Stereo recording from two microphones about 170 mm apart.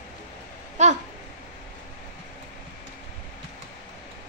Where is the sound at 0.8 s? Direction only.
45° right (ahead or behind).